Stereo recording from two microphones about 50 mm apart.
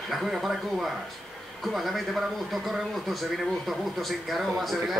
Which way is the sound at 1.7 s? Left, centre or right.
Centre.